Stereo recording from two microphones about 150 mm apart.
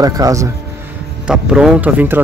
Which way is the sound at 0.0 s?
20° right (ahead or behind).